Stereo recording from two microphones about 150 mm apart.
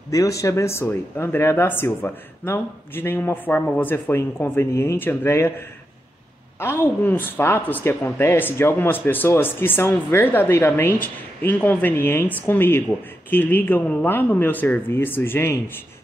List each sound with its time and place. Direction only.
0.1 s speech: 20° left (ahead or behind)
6.6 s speech: 15° left (ahead or behind)